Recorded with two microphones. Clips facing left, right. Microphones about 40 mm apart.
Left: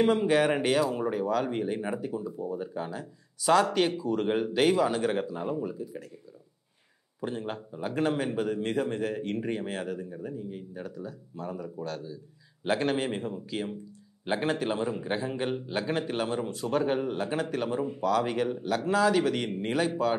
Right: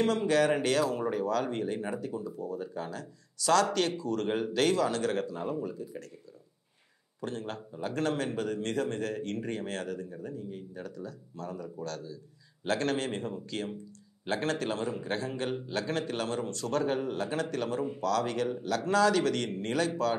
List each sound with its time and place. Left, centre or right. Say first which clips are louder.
0.0 s a man's voice: left 3 dB; centre
7.2 s a man's voice: left 3 dB; centre